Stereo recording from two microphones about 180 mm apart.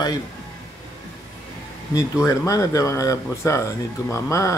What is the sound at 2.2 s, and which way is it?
Speech, 20° left (ahead or behind).